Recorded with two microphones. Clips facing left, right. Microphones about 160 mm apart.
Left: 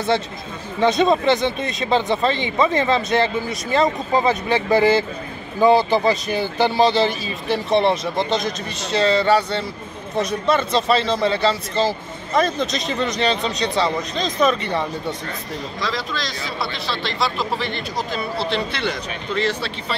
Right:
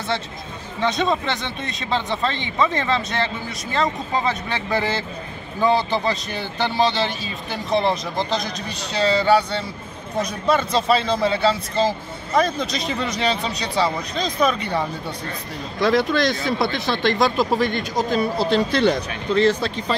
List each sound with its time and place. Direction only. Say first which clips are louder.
0.8 s speech: left 6 dB; 10° left (ahead or behind)
15.8 s speech: right 10 dB; 55° right (ahead or behind); by 20.0 s 40° right (ahead or behind)